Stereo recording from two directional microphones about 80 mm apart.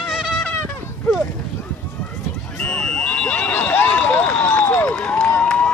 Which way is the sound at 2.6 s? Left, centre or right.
Centre.